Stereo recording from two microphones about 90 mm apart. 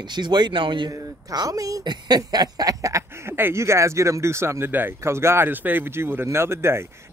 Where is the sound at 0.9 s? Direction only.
40° right (ahead or behind).